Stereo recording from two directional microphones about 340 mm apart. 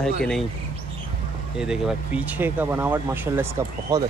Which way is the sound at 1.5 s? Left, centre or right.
Centre.